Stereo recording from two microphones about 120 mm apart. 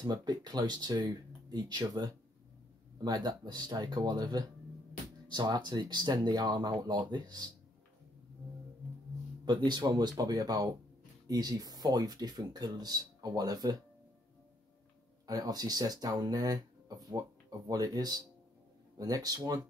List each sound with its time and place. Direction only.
0.0 s speech: 35° right (ahead or behind)
9.4 s speech: 40° right (ahead or behind)
15.2 s speech: 30° right (ahead or behind)